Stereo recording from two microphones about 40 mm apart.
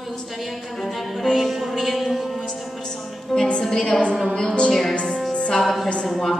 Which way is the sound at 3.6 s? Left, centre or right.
Centre.